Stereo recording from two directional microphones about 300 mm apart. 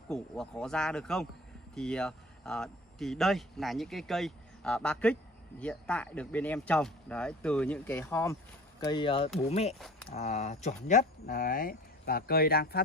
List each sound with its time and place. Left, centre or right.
0.1 s speech: centre; by 12.8 s left